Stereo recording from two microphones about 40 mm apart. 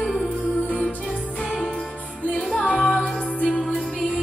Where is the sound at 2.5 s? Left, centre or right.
Left.